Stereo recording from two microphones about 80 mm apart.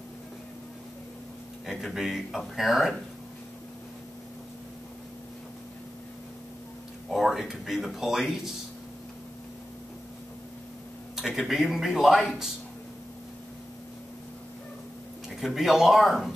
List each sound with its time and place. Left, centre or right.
2.0 s a man's voice: centre
7.1 s a man's voice: centre
11.1 s a man's voice: centre
15.2 s a man's voice: centre